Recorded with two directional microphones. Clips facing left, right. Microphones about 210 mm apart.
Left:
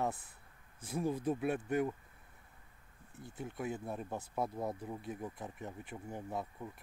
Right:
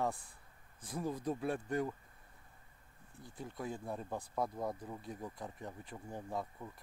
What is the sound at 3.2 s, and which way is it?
Speech, 25° left (ahead or behind).